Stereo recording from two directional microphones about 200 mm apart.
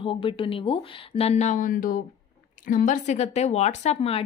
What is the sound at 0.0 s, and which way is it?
A woman's voice, 25° left (ahead or behind).